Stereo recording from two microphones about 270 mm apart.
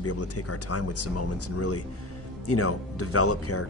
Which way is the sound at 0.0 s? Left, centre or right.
Left.